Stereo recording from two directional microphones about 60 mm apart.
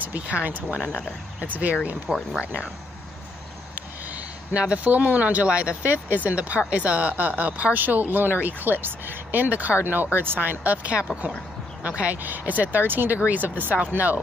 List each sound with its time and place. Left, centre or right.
0.0 s speech: right
4.6 s speech: right